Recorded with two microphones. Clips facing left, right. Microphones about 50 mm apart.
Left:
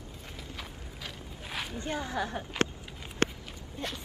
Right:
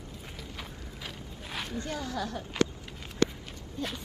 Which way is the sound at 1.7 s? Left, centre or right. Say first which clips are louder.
Left 2 dB; left.